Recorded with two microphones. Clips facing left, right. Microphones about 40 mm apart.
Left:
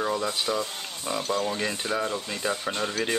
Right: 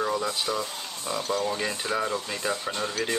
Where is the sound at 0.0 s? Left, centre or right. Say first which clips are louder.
Even; centre.